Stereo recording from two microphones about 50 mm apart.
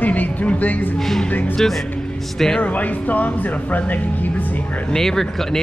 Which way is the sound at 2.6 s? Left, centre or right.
Left.